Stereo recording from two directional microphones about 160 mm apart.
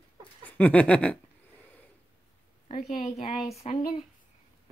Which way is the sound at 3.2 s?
35° left (ahead or behind).